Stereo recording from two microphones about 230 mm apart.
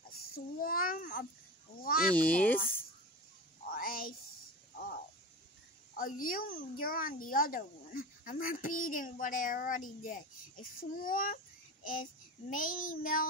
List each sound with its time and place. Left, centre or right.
0.3 s babbling: left
1.8 s speech: left
2.1 s speech: centre
3.7 s a sound: left
5.9 s a woman's voice: left
12.4 s a woman's voice: left